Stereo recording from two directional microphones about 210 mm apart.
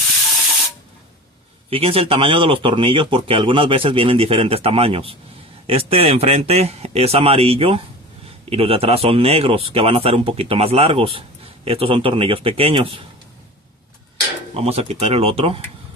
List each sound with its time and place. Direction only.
1.7 s speech: 25° right (ahead or behind)
14.5 s speech: 30° right (ahead or behind)